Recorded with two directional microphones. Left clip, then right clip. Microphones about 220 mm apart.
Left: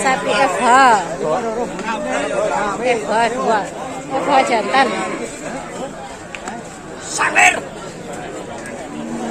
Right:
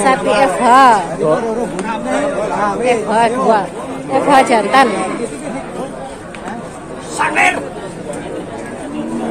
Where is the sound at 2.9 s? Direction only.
5° right (ahead or behind).